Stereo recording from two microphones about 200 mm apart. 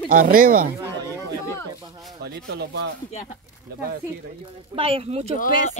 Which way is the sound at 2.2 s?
55° right (ahead or behind).